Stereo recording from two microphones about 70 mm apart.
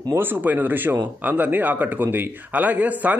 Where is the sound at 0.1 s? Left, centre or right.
Right.